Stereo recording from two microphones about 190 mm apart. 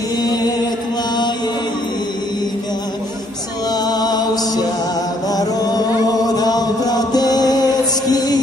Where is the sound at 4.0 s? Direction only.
20° left (ahead or behind).